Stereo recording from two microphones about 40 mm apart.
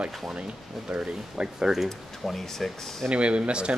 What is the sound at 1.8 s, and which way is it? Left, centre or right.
A man's voice, centre.